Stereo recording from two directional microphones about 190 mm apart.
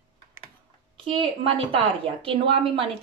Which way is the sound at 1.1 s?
30° right (ahead or behind).